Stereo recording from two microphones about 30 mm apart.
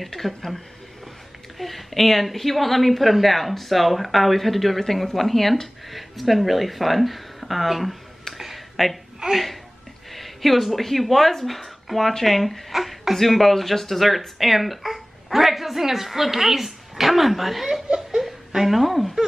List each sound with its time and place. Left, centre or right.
0.0 s a woman's voice: centre
1.6 s a woman's voice: centre
17.9 s laughter: right
18.6 s a woman's voice: centre